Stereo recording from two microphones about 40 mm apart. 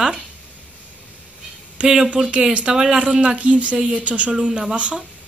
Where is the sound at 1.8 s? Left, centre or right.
Right.